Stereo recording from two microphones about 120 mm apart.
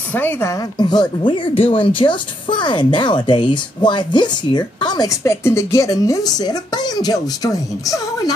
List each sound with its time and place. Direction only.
0.1 s a woman's voice: 15° left (ahead or behind)
0.7 s speech: 40° left (ahead or behind)